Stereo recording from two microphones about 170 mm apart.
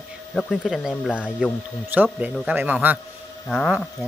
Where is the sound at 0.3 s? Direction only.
5° left (ahead or behind).